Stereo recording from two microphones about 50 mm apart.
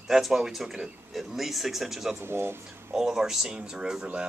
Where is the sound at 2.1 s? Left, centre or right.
Right.